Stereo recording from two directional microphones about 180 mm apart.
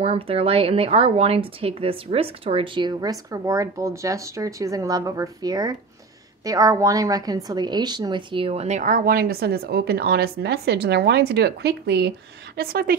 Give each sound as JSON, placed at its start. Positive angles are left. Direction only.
{"t": 0.0, "sound": "a woman's voice", "side_deg": -30}
{"t": 12.5, "sound": "a woman's voice", "side_deg": -60}